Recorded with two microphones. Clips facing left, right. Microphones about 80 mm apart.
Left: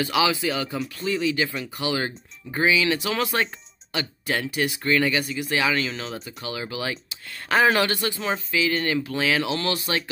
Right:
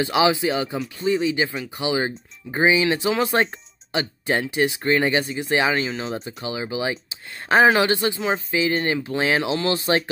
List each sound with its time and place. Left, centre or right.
0.0 s speech: right
1.0 s speech: right
1.8 s speech: centre
6.0 s speech: right
6.4 s speech: centre
8.5 s speech: right